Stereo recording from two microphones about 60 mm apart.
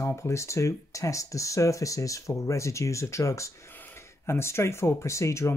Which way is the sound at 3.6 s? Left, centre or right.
Left.